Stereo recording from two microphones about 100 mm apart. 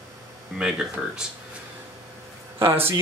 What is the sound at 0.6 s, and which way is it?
Speech, 5° right (ahead or behind).